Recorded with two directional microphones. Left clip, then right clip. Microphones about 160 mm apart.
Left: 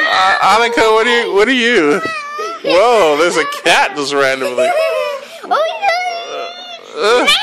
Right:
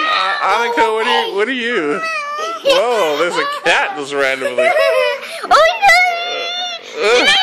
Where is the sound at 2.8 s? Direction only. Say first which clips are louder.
Left 5 dB; 60° left (ahead or behind); by 4.5 s 40° left (ahead or behind).